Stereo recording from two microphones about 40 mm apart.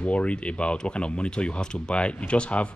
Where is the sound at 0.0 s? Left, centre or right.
Left.